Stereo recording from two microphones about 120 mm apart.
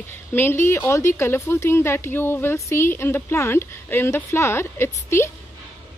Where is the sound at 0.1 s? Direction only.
20° left (ahead or behind).